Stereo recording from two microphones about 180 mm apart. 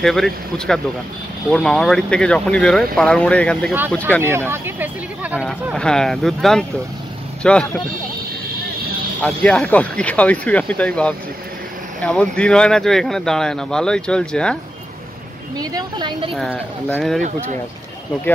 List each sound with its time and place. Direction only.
0.0 s speech: centre (ahead or behind)
4.2 s speech: 15° right (ahead or behind); by 7.6 s 5° left (ahead or behind)
9.2 s speech: 5° left (ahead or behind)
15.5 s a woman's voice: 20° right (ahead or behind)
16.3 s speech: centre (ahead or behind)